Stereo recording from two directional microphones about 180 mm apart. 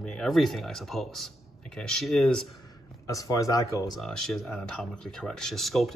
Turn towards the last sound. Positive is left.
turn(degrees=0)  # may be behind; listen again after turning